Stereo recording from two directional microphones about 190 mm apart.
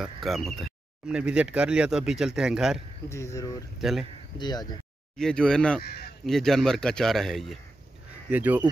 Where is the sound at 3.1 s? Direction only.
15° left (ahead or behind).